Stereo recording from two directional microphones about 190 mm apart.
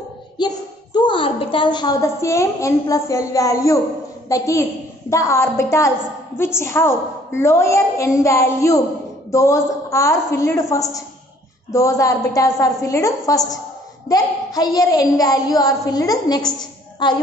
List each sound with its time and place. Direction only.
0.9 s a woman's voice: 25° left (ahead or behind)